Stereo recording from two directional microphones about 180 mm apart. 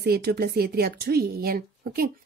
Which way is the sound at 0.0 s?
60° right (ahead or behind).